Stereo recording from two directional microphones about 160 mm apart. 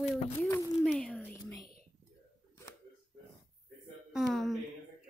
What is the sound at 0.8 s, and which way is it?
Speech, 5° left (ahead or behind).